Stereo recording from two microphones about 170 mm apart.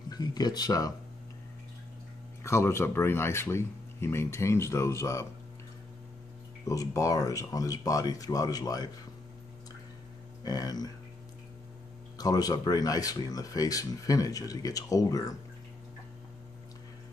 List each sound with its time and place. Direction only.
0.1 s speech: 25° left (ahead or behind)
2.4 s speech: 15° left (ahead or behind)
6.6 s speech: 20° left (ahead or behind)
10.4 s speech: 25° left (ahead or behind)
12.2 s speech: 20° left (ahead or behind)